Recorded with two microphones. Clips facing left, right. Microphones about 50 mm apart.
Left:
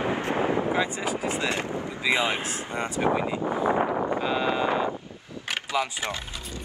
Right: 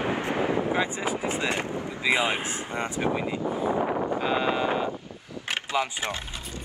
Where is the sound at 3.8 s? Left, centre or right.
Centre.